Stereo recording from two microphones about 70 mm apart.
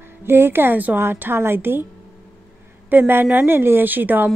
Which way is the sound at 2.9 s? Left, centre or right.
Right.